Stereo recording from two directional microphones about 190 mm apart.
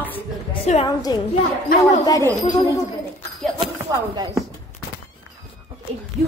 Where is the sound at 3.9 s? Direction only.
20° right (ahead or behind).